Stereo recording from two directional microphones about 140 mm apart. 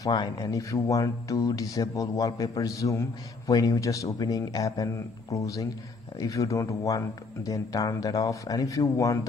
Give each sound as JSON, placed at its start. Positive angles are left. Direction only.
{"t": 0.0, "sound": "speech", "side_deg": 30}